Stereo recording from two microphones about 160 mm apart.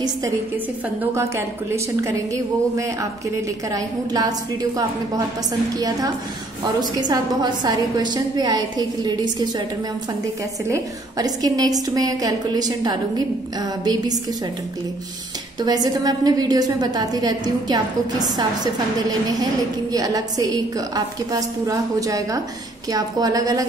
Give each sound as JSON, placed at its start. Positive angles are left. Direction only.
{"t": 1.1, "sound": "a woman's voice", "side_deg": -15}
{"t": 3.7, "sound": "a woman's voice", "side_deg": -25}
{"t": 10.7, "sound": "a woman's voice", "side_deg": -25}
{"t": 15.6, "sound": "a woman's voice", "side_deg": -25}